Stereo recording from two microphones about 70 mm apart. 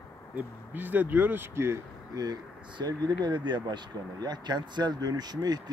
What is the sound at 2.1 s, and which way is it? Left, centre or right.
Speech, right.